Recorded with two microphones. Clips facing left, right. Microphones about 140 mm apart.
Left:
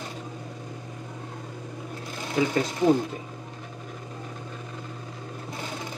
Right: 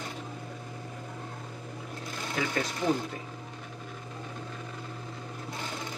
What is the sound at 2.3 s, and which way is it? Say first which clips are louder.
Speech: left 7 dB; 20° left (ahead or behind).